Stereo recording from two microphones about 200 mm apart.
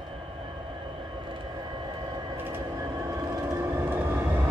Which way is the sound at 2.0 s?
20° right (ahead or behind).